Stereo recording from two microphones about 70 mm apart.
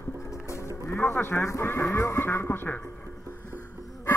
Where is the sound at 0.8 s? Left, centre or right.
Left.